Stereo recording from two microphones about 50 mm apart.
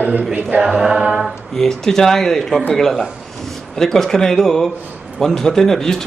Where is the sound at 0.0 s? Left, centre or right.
Right.